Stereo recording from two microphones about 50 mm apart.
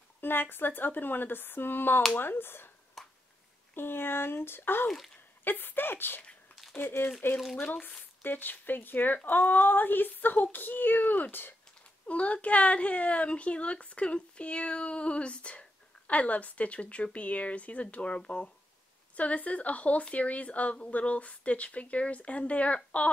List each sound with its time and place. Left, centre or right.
0.2 s a woman's voice: left
3.0 s a sound: centre
3.7 s a woman's voice: left
4.8 s speech: centre
5.4 s a woman's voice: left
7.3 s speech: centre
8.2 s speech: left
12.1 s speech: left